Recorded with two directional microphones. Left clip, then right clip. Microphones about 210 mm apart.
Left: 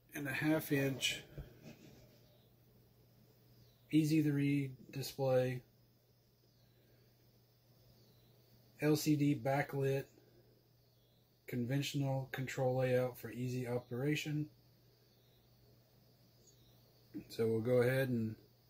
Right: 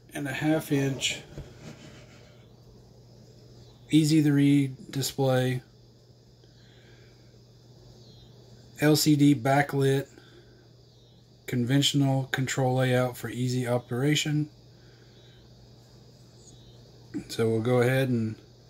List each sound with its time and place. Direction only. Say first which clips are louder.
0.1 s speech: right 9 dB; centre (ahead or behind)
3.9 s speech: right 11 dB; 20° right (ahead or behind)
8.7 s speech: right 11 dB; 25° right (ahead or behind)
11.4 s speech: right 15 dB; 25° right (ahead or behind)
17.3 s speech: right 8 dB; 15° right (ahead or behind)